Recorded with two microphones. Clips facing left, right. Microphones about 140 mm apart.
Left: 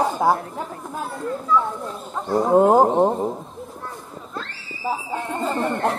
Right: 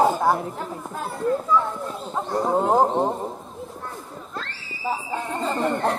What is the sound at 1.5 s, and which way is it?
Speech, centre (ahead or behind).